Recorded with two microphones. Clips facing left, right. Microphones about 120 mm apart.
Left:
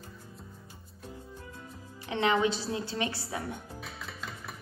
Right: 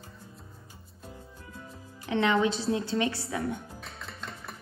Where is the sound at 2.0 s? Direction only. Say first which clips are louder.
Right 2 dB; 30° left (ahead or behind).